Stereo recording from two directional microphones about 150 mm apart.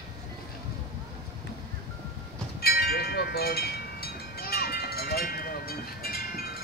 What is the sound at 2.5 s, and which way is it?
Wind chime, 90° left.